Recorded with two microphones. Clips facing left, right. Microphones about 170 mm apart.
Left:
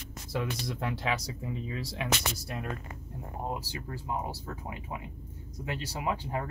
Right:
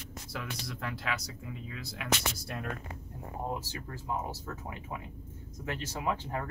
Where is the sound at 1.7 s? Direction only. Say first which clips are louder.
Left 6 dB; 25° left (ahead or behind).